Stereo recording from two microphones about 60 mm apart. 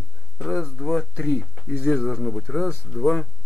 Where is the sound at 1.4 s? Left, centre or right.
Centre.